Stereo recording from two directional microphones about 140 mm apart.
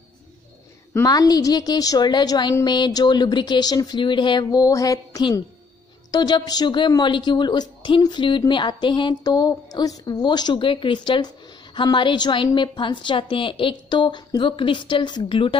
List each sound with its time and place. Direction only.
1.0 s a woman's voice: 25° left (ahead or behind)